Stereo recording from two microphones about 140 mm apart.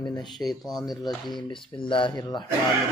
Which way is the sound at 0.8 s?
30° left (ahead or behind).